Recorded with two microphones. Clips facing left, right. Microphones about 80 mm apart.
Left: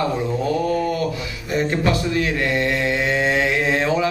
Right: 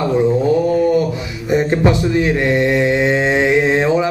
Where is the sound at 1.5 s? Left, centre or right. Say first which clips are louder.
Right 6 dB; right.